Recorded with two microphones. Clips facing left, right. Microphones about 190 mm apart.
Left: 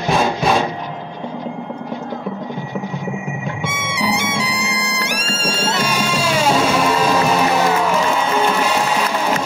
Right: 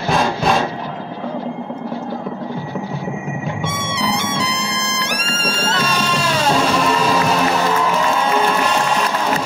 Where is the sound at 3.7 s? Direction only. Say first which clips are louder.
Left 2 dB; 10° left (ahead or behind).